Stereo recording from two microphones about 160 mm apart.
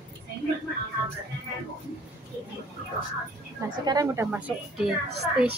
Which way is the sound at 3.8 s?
25° right (ahead or behind).